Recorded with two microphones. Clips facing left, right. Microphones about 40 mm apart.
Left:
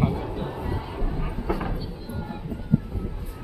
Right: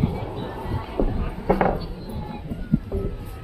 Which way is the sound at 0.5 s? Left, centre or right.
Centre.